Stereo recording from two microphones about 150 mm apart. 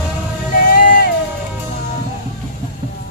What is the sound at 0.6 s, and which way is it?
Music, 65° left (ahead or behind).